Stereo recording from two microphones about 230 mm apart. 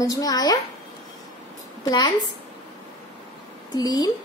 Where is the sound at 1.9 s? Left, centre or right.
Centre.